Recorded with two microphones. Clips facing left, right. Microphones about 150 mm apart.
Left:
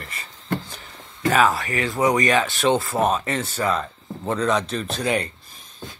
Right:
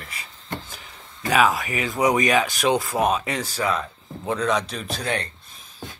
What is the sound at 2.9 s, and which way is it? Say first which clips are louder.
Speech: left 1 dB; 10° right (ahead or behind).